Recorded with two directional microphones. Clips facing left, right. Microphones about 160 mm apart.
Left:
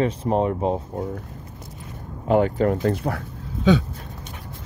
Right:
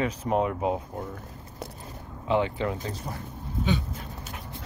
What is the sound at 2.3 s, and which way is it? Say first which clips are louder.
Speech: left 7 dB; 45° left (ahead or behind).